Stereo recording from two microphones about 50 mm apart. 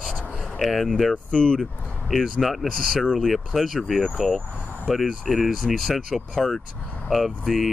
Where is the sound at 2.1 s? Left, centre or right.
Centre.